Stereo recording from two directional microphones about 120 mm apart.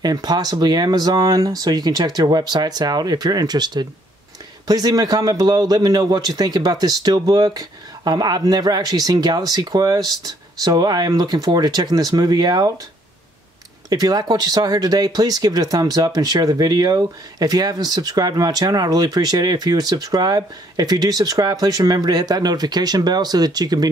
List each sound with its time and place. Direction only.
0.0 s speech: 35° right (ahead or behind)
13.8 s speech: 30° right (ahead or behind)